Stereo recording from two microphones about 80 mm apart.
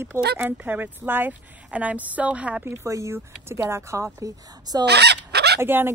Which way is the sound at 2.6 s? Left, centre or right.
Right.